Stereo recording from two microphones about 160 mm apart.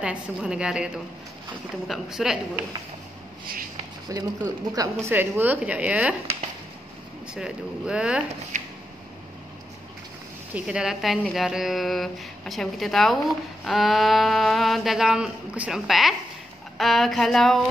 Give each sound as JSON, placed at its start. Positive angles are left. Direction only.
{"t": 0.0, "sound": "speech", "side_deg": -5}
{"t": 4.1, "sound": "speech", "side_deg": -20}
{"t": 7.3, "sound": "speech", "side_deg": -5}
{"t": 8.5, "sound": "a sound", "side_deg": -50}
{"t": 10.5, "sound": "speech", "side_deg": -5}